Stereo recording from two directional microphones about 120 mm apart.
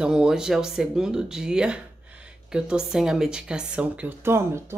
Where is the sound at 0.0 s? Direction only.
5° right (ahead or behind).